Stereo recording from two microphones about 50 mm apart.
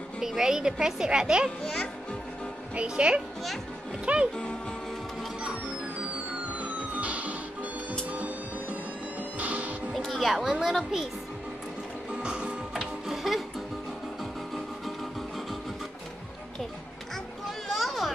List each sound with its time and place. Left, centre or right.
0.2 s speech: centre
1.6 s a child's voice: centre
2.7 s a woman's voice: right
6.6 s music: right
9.4 s music: right
9.9 s music: centre
10.4 s a child's voice: centre
12.1 s music: right
12.7 s music: centre
17.6 s a sound: centre